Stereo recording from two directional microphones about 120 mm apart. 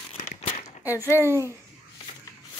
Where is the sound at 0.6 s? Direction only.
25° left (ahead or behind).